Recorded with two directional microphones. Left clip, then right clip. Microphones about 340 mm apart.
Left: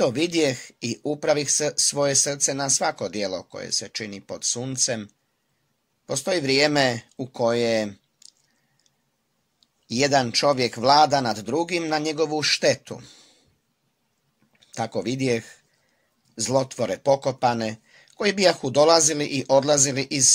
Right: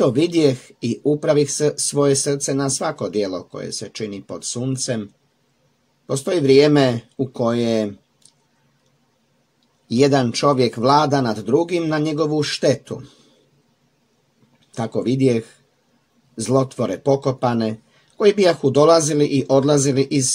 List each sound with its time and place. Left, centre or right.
0.0 s speech: centre
6.0 s speech: centre
9.8 s speech: centre
14.7 s speech: left